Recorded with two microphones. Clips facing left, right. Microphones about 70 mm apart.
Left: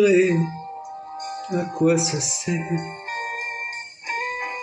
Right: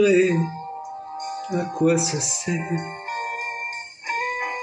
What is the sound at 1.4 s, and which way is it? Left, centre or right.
Speech, centre.